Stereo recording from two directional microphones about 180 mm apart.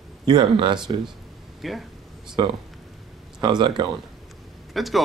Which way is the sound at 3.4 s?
25° right (ahead or behind).